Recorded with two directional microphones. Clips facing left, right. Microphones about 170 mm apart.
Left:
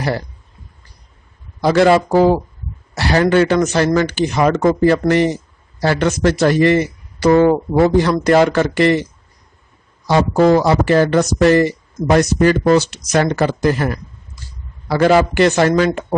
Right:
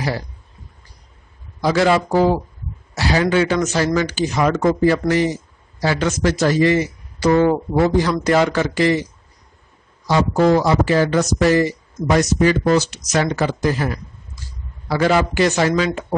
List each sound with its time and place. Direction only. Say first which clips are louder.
1.6 s speech: left 4 dB; 55° left (ahead or behind)
10.0 s speech: left 3 dB; 60° left (ahead or behind)
14.9 s speech: left 4 dB; 55° left (ahead or behind)